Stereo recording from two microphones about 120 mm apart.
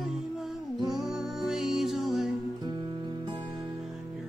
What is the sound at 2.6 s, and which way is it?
Music, 40° right (ahead or behind).